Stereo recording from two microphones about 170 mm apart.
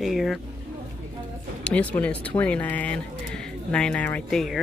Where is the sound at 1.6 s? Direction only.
10° left (ahead or behind).